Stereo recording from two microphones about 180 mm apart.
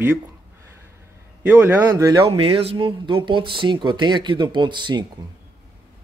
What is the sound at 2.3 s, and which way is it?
Speech, 30° right (ahead or behind).